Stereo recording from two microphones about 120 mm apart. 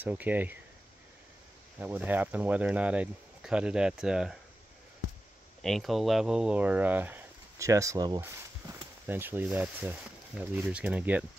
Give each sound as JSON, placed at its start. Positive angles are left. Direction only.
{"t": 0.0, "sound": "speech", "side_deg": -15}
{"t": 1.8, "sound": "speech", "side_deg": -15}
{"t": 5.6, "sound": "speech", "side_deg": 0}
{"t": 9.0, "sound": "speech", "side_deg": -15}